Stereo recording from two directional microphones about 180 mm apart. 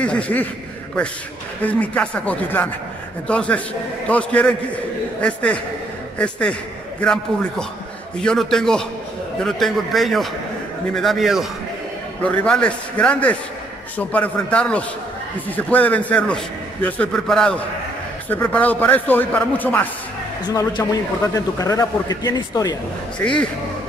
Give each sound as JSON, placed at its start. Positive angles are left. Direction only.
{"t": 0.0, "sound": "a man's voice", "side_deg": 5}
{"t": 1.6, "sound": "a man's voice", "side_deg": 10}
{"t": 20.4, "sound": "a man's voice", "side_deg": 20}
{"t": 23.1, "sound": "a man's voice", "side_deg": 5}